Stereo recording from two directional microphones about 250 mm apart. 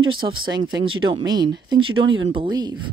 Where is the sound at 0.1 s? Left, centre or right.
Centre.